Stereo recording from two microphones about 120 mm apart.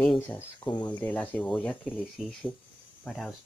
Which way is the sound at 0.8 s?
15° left (ahead or behind).